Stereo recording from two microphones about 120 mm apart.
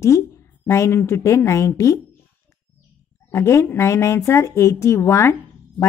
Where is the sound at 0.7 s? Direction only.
25° left (ahead or behind).